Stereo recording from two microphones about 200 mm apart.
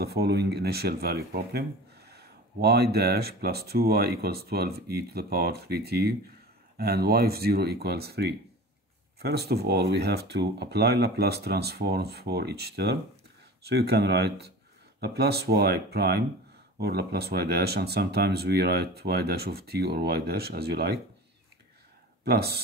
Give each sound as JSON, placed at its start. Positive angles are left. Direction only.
{"t": 0.0, "sound": "speech", "side_deg": -55}
{"t": 22.2, "sound": "speech", "side_deg": -55}